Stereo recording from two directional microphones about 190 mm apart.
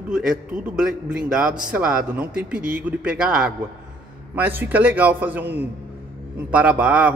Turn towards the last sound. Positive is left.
turn(degrees=-5)  # may be behind; listen again after turning